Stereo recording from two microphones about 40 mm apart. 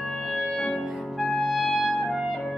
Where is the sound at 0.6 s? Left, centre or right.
Centre.